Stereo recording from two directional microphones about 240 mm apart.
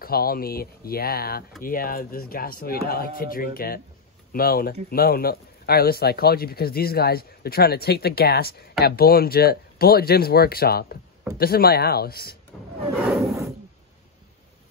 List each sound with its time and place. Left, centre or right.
0.0 s speech: left